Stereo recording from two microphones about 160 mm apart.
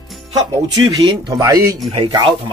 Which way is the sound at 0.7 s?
25° right (ahead or behind).